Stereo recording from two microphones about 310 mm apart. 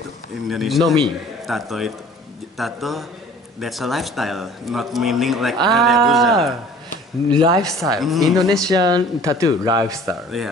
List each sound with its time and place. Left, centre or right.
0.5 s speech: centre
7.2 s speech: centre
7.7 s speech: centre
8.6 s speech: centre
10.0 s speech: centre